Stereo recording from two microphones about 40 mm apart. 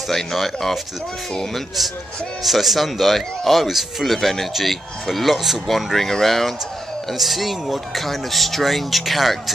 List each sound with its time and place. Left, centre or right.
0.1 s speech: centre
2.4 s speech: centre